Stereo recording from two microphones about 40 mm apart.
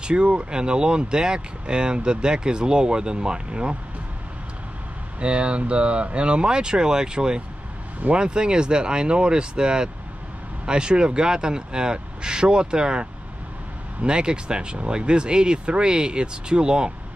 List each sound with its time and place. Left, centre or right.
0.0 s speech: right
5.2 s speech: right